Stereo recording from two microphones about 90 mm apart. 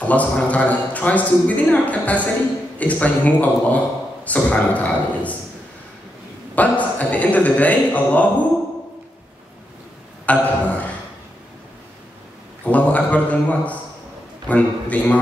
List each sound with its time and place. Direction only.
0.0 s speech: 15° left (ahead or behind)
6.5 s speech: 15° left (ahead or behind)
10.2 s a sound: 15° left (ahead or behind)
12.6 s speech: 15° left (ahead or behind)